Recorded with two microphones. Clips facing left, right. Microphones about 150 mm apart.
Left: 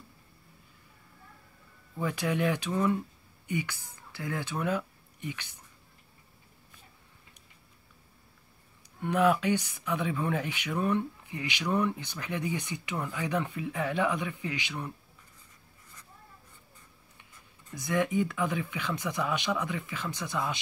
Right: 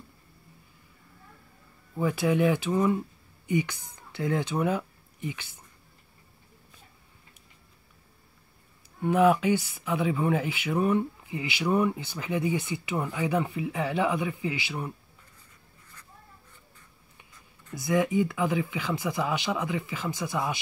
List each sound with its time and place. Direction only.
2.0 s speech: 15° right (ahead or behind)
9.0 s speech: 15° right (ahead or behind)
17.8 s speech: 15° right (ahead or behind)